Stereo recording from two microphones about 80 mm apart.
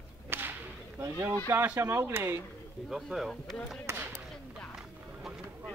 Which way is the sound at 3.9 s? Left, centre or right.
Right.